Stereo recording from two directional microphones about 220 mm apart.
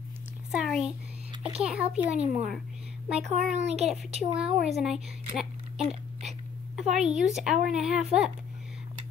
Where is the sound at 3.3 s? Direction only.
30° right (ahead or behind).